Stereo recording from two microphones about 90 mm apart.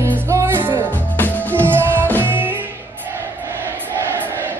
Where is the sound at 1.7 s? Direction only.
25° right (ahead or behind).